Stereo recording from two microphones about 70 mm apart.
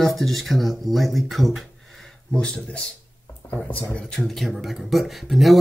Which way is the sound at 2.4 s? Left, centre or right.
Centre.